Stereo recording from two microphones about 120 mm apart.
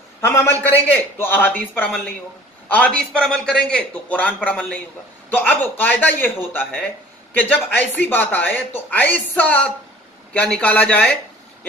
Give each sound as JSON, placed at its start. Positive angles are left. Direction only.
{"t": 0.2, "sound": "a man's voice", "side_deg": 20}